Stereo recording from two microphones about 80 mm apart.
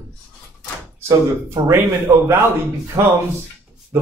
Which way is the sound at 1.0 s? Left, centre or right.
Right.